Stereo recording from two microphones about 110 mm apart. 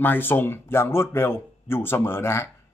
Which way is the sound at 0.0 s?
20° left (ahead or behind).